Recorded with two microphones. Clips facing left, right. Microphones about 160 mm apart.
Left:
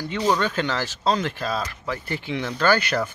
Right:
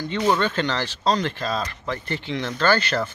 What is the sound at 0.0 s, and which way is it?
Speech, 10° left (ahead or behind).